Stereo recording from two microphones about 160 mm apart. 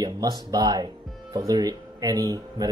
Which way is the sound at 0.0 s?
25° right (ahead or behind).